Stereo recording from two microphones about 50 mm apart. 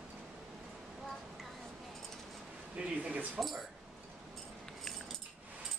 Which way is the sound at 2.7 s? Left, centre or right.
Right.